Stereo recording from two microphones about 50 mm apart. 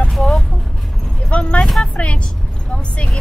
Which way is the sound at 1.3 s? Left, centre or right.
Left.